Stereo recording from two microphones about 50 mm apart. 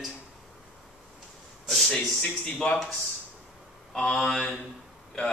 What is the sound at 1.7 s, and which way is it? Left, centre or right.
Speech, centre.